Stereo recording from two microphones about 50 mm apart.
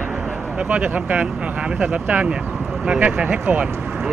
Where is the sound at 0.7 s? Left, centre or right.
Right.